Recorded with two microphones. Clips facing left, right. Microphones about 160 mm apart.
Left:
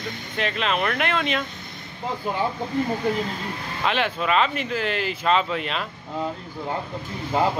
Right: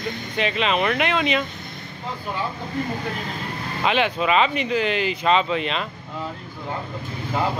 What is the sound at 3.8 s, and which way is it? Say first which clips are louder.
Speech: right 3 dB; 5° right (ahead or behind).